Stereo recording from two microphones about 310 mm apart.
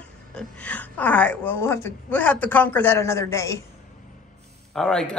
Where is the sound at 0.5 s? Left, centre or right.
Centre.